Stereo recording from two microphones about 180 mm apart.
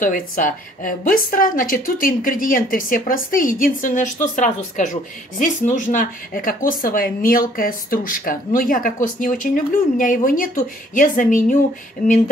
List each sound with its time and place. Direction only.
0.0 s speech: 50° left (ahead or behind)